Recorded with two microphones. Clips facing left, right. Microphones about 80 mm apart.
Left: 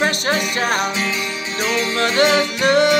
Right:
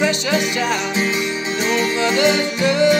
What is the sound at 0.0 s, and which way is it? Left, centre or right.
Music, left.